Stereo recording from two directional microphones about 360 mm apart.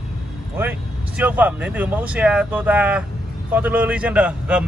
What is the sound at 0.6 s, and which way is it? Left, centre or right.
A man's voice, centre.